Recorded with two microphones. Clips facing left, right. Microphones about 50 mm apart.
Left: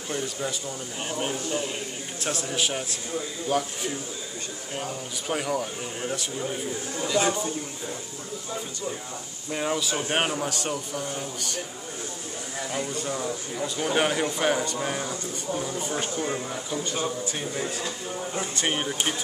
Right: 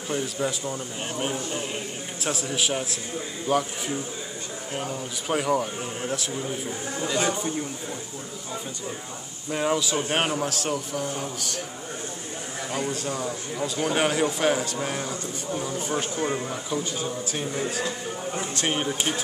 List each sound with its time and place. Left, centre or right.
0.4 s speech: centre
7.0 s speech: right
9.5 s speech: centre
12.7 s speech: centre